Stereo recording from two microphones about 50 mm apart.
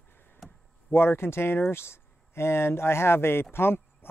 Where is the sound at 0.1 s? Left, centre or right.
Left.